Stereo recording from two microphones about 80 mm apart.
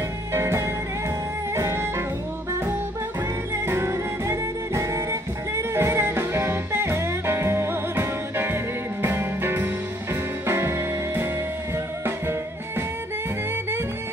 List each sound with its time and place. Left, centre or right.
0.3 s music: right
3.6 s music: right